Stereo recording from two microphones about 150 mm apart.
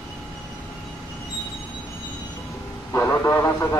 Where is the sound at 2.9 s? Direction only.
15° left (ahead or behind).